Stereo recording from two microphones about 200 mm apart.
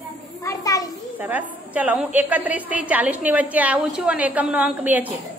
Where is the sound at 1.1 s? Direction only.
10° right (ahead or behind).